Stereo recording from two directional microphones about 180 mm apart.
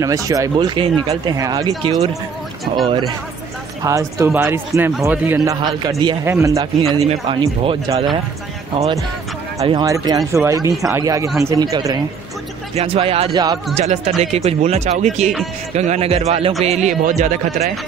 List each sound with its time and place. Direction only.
0.0 s speech: 20° right (ahead or behind)
3.8 s a man's voice: 20° right (ahead or behind)
6.9 s a man's voice: 30° right (ahead or behind)
12.7 s speech: 35° right (ahead or behind)